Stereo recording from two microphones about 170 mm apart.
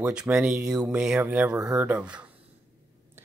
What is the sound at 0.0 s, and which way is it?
Speech, 5° right (ahead or behind).